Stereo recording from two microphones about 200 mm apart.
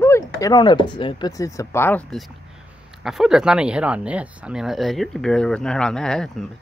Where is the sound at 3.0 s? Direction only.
Centre (ahead or behind).